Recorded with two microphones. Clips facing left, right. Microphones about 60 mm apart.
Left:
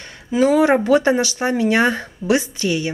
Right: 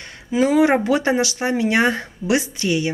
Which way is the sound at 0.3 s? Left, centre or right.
Centre.